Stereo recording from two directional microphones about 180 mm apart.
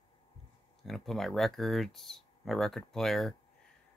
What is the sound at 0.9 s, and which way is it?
Speech, centre (ahead or behind).